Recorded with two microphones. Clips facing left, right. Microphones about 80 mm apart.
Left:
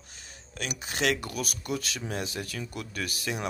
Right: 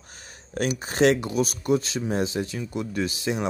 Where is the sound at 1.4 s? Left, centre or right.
Right.